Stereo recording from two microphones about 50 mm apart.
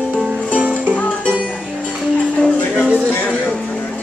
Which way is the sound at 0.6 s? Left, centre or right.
Right.